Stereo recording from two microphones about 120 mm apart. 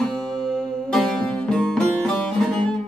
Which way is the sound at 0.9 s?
5° left (ahead or behind).